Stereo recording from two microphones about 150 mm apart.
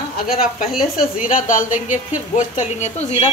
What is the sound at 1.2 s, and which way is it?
Speech, 60° left (ahead or behind).